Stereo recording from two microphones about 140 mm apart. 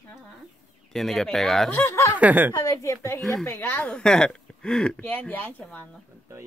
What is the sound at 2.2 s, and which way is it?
Speech, 10° right (ahead or behind).